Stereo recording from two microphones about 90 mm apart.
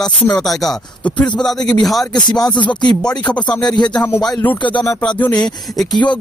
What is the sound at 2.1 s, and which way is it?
Rapping, 50° left (ahead or behind).